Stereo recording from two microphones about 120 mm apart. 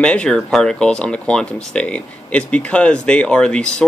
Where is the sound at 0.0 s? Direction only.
10° left (ahead or behind).